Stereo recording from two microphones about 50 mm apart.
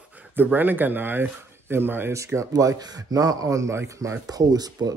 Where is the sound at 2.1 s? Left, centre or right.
Right.